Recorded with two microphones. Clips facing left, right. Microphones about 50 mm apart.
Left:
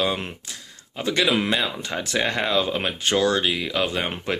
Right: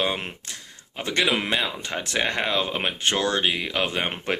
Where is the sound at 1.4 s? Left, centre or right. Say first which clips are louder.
Left 2 dB; right.